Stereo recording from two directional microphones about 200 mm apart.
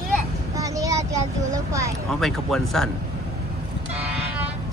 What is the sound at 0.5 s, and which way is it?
Speech, 15° right (ahead or behind).